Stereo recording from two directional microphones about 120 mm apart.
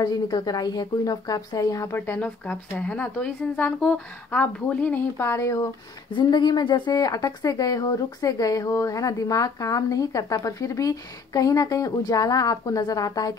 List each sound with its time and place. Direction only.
0.0 s a woman's voice: 35° left (ahead or behind)
6.1 s a woman's voice: 40° left (ahead or behind)